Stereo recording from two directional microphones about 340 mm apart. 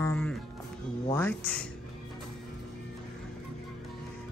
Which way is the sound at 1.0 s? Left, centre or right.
Centre.